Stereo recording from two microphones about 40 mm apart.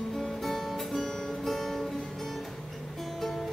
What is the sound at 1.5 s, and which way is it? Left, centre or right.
Music, centre.